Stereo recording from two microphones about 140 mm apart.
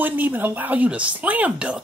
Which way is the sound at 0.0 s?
15° right (ahead or behind).